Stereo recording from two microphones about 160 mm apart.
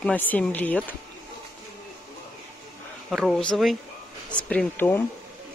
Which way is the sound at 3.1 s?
Centre (ahead or behind).